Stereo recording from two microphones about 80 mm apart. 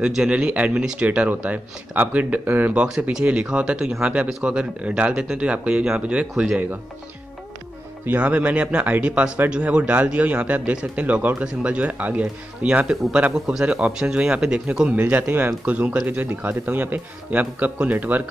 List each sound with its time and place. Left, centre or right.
0.0 s speech: centre
8.1 s a man's voice: centre